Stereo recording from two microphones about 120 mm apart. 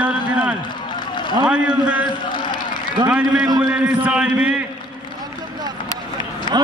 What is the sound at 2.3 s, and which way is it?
Run, 40° left (ahead or behind).